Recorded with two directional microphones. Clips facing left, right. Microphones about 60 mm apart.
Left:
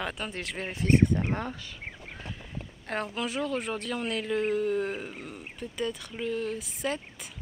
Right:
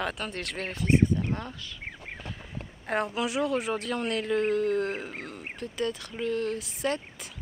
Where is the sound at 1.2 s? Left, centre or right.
Left.